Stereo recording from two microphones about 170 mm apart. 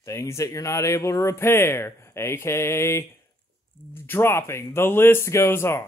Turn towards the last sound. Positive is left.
turn(degrees=15)  # may be behind; listen again after turning